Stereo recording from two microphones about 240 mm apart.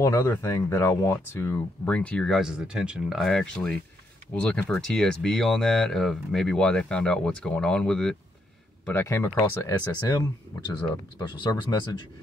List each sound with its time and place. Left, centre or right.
0.0 s speech: centre